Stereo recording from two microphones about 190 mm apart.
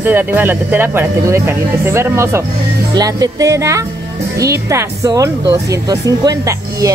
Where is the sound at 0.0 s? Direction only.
10° right (ahead or behind).